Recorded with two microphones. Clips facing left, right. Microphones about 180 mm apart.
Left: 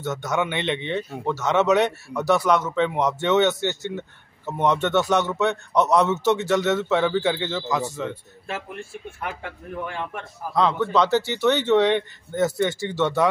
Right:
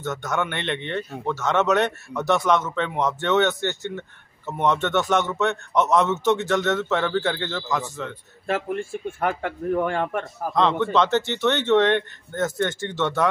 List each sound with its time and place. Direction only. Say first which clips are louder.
0.0 s a man's voice: left 1 dB; 10° left (ahead or behind)
9.2 s speech: right 9 dB; 55° right (ahead or behind)
10.5 s a man's voice: even; 5° left (ahead or behind)